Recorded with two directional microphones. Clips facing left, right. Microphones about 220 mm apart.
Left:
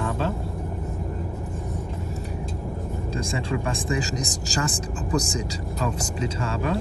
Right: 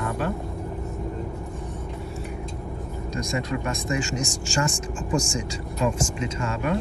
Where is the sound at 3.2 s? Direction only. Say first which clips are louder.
Right 1 dB; 30° left (ahead or behind).